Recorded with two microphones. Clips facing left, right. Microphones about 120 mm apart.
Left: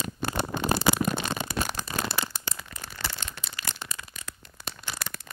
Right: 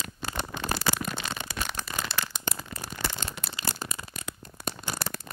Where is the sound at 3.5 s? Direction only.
35° right (ahead or behind).